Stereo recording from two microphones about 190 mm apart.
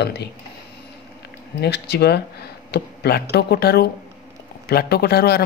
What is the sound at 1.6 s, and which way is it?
Speech, 60° left (ahead or behind).